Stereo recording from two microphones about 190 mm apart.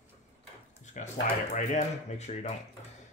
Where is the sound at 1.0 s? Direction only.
40° left (ahead or behind).